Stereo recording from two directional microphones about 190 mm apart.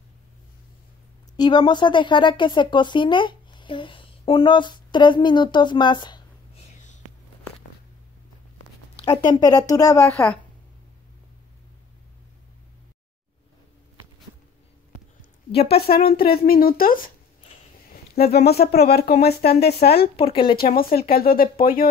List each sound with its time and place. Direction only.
1.3 s speech: 20° left (ahead or behind)
9.3 s a woman's voice: 20° left (ahead or behind)
15.5 s a woman's voice: 30° left (ahead or behind)
15.9 s speech: 55° left (ahead or behind)
20.2 s speech: 25° left (ahead or behind)
20.5 s speech: 50° left (ahead or behind)